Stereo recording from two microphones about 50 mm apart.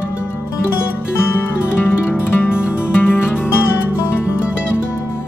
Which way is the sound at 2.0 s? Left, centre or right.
Left.